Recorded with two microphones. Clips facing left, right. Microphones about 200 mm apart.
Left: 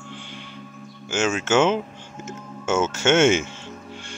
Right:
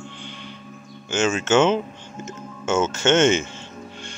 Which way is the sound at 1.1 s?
10° left (ahead or behind).